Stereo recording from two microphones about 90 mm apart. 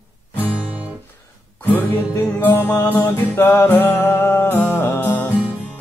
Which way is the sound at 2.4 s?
20° left (ahead or behind).